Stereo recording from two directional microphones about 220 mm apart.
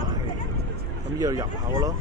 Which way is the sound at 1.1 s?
15° right (ahead or behind).